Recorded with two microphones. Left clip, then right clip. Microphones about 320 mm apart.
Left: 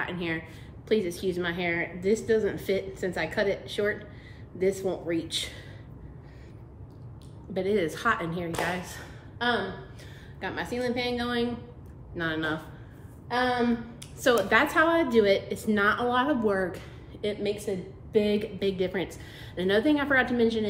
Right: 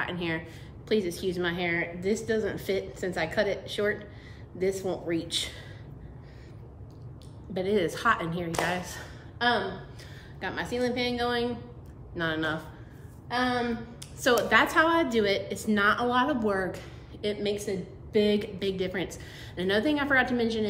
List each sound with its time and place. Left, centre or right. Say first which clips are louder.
0.0 s a woman's voice: even; centre
7.5 s a woman's voice: even; centre